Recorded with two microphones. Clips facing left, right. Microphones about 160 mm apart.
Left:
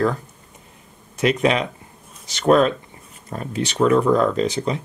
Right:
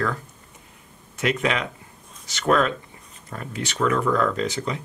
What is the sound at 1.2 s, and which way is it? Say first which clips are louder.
Speech: left 5 dB; 30° left (ahead or behind).